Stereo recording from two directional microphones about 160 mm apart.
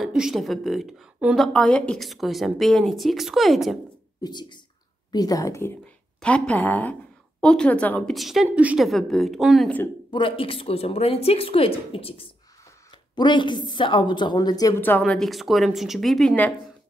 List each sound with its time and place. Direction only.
0.0 s a woman's voice: 5° right (ahead or behind)
4.2 s a woman's voice: 25° left (ahead or behind); by 9.7 s centre (ahead or behind)
10.1 s a woman's voice: 35° left (ahead or behind)
14.8 s a woman's voice: 10° left (ahead or behind)